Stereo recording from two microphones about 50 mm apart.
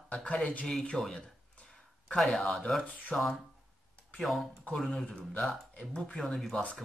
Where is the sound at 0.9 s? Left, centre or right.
Centre.